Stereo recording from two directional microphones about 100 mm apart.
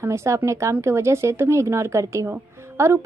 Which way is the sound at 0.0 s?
30° right (ahead or behind).